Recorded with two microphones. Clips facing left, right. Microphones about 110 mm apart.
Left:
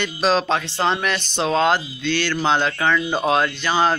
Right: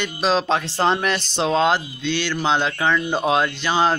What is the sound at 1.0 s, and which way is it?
Speech, 30° right (ahead or behind).